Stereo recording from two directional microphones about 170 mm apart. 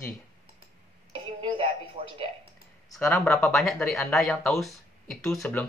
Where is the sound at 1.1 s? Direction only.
30° right (ahead or behind).